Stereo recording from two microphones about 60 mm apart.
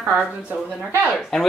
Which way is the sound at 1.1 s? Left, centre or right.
Centre.